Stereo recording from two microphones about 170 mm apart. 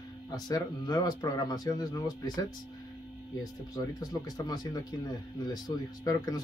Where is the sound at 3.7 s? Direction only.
20° left (ahead or behind).